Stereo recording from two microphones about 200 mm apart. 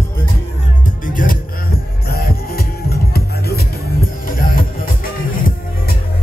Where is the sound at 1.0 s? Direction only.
40° left (ahead or behind).